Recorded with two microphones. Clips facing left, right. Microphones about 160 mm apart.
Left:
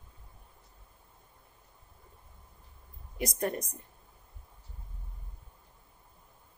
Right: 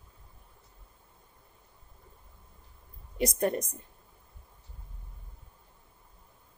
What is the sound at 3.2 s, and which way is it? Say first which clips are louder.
Speech: right 4 dB; 25° right (ahead or behind).